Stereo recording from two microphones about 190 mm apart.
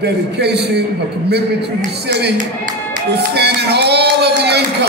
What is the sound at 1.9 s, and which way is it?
Speech, 60° right (ahead or behind).